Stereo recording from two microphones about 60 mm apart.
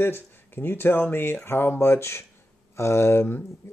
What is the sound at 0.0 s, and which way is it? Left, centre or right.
Speech, left.